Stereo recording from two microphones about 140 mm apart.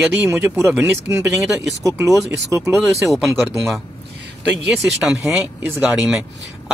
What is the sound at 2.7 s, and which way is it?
Speech, centre (ahead or behind).